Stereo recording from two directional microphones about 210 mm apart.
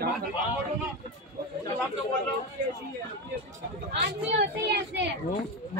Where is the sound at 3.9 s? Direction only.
55° right (ahead or behind).